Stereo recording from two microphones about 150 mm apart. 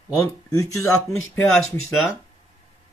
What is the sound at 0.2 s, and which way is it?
Speech, 20° left (ahead or behind).